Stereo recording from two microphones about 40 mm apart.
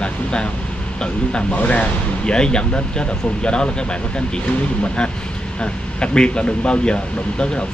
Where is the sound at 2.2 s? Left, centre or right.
Left.